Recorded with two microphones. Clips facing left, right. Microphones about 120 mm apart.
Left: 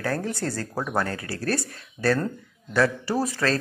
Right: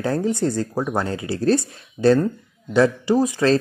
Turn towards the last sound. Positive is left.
turn(degrees=-20)  # may be behind; listen again after turning